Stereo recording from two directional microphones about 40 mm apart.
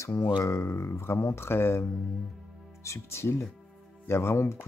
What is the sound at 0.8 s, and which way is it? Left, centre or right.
Speech, left.